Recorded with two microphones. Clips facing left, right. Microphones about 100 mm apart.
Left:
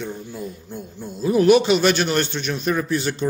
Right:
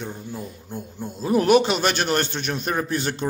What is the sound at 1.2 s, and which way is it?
Speech, 45° right (ahead or behind).